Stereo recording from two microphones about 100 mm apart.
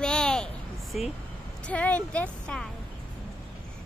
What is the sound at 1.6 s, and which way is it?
Speech, 15° left (ahead or behind).